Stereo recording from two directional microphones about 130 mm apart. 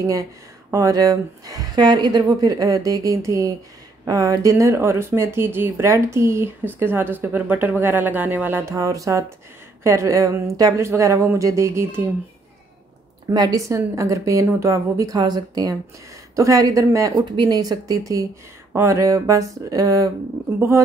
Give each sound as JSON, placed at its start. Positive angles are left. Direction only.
{"t": 0.7, "sound": "speech", "side_deg": -25}
{"t": 13.3, "sound": "speech", "side_deg": -30}